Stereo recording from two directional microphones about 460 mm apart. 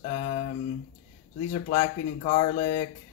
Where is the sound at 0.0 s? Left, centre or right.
Centre.